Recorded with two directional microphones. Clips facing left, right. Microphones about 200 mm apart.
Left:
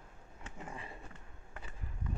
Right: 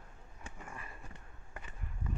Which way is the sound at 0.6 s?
20° left (ahead or behind).